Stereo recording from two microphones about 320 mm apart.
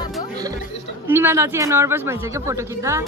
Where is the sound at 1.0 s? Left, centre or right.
Centre.